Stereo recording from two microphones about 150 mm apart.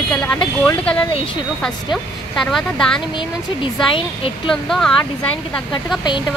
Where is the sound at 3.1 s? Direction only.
30° left (ahead or behind).